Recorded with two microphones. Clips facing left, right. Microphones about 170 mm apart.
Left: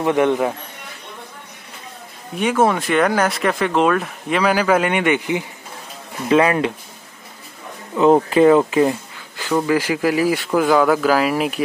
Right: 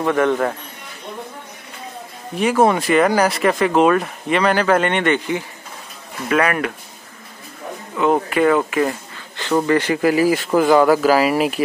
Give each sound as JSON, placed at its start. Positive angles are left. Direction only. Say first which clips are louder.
{"t": 0.0, "sound": "speech", "louder": "left 1 dB", "side_deg": 20}
{"t": 2.3, "sound": "speech", "louder": "right 2 dB", "side_deg": 0}
{"t": 7.9, "sound": "speech", "louder": "left 4 dB", "side_deg": 30}
{"t": 9.7, "sound": "speech", "louder": "right 2 dB", "side_deg": 5}